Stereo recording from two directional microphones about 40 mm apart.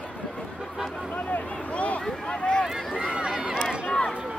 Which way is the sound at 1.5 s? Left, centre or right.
Left.